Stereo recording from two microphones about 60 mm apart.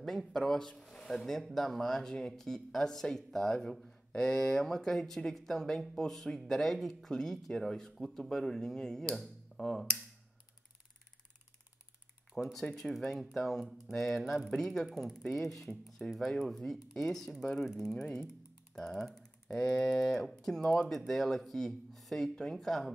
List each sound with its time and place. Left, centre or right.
0.0 s speech: centre
12.6 s speech: centre